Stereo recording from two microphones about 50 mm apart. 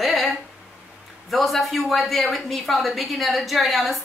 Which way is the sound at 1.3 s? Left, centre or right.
Centre.